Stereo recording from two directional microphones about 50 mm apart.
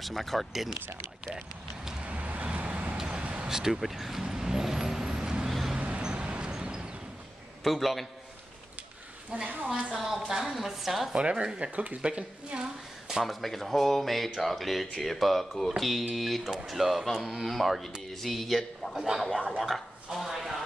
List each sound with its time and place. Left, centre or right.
0.0 s speech: centre
2.0 s vehicle: right
3.4 s speech: centre
5.5 s vehicle: centre
5.8 s vehicle: right
7.6 s speech: centre
9.3 s a woman's voice: right
9.9 s speech: centre
11.1 s a woman's voice: centre
11.7 s speech: right
12.0 s a woman's voice: centre
13.1 s speech: centre
20.1 s a sound: centre